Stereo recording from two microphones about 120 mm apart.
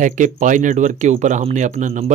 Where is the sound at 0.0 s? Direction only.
90° right.